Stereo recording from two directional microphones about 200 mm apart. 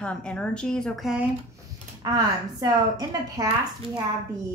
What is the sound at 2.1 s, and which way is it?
A woman's voice, 20° right (ahead or behind).